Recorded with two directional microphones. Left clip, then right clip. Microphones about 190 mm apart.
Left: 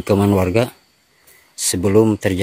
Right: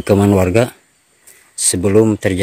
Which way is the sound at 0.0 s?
25° right (ahead or behind).